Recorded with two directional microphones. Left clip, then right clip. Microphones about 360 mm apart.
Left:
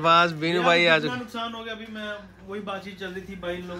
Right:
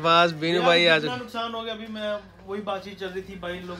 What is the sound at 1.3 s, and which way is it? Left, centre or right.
Speech, right.